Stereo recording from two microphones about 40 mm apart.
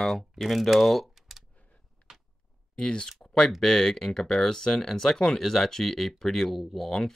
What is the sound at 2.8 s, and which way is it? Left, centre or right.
Speech, left.